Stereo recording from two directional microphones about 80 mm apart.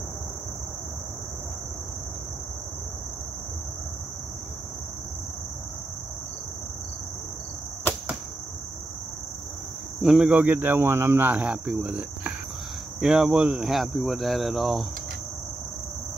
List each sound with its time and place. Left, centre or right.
10.0 s cricket: centre
13.0 s speech: centre